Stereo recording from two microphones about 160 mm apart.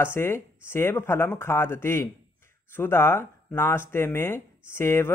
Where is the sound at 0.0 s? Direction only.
15° left (ahead or behind).